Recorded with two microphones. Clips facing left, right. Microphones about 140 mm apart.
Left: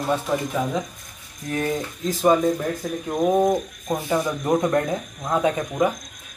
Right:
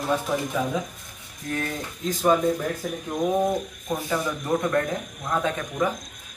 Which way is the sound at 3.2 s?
15° left (ahead or behind).